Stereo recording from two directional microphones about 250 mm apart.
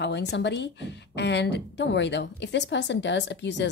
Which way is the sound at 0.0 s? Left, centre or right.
Left.